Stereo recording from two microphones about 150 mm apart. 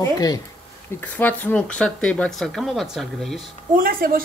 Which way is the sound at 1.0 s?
10° left (ahead or behind).